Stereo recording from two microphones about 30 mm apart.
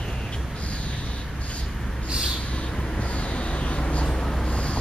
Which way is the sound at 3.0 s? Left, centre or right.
Left.